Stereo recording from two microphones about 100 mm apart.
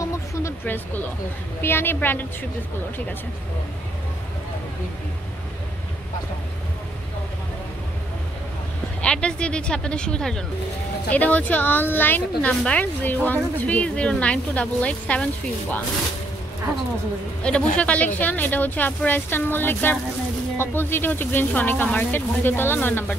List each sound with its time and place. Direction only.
0.0 s vehicle: 30° left (ahead or behind)
1.6 s speech: 20° left (ahead or behind)
9.0 s a woman's voice: 10° left (ahead or behind)
17.4 s a woman's voice: 10° left (ahead or behind)